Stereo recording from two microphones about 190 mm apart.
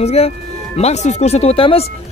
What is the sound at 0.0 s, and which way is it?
Speech, 35° left (ahead or behind).